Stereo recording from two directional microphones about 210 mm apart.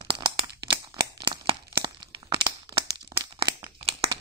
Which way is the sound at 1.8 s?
20° right (ahead or behind).